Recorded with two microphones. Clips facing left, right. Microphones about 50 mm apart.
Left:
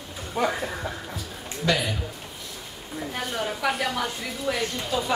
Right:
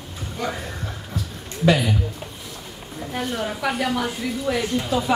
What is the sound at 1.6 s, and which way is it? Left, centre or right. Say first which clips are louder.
Speech: right 6 dB; centre.